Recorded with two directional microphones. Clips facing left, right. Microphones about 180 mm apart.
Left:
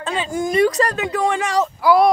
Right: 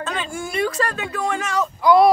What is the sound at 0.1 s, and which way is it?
A woman's voice, 40° left (ahead or behind).